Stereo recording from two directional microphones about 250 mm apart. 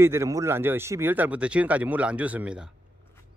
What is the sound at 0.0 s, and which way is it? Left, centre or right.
Speech, centre.